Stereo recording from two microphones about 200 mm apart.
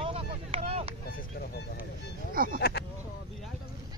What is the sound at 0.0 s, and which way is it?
Vehicle, 30° right (ahead or behind).